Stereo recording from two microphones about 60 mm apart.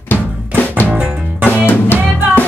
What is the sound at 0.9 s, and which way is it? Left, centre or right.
Music, right.